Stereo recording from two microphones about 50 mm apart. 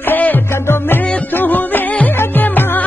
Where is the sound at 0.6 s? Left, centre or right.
Left.